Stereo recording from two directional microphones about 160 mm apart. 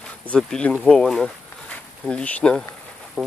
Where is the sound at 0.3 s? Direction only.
5° left (ahead or behind).